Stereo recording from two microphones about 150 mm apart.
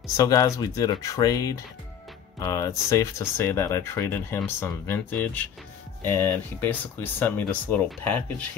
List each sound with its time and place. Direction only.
0.0 s speech: 20° left (ahead or behind)